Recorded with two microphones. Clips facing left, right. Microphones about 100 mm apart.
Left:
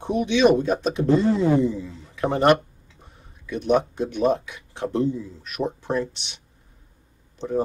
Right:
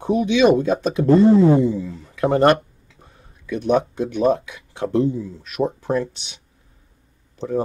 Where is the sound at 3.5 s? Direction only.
45° right (ahead or behind).